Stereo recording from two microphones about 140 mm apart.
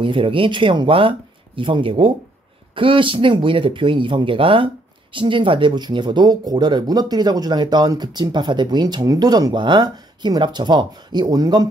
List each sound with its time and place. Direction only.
0.0 s speech: 35° right (ahead or behind)